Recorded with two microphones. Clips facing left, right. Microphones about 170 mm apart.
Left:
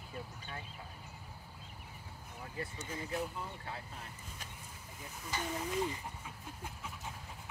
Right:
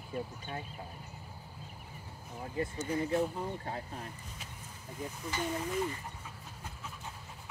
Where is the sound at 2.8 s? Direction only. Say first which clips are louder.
Right 9 dB; 30° right (ahead or behind).